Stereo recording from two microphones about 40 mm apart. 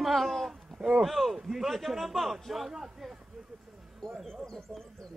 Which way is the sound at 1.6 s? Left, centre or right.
Centre.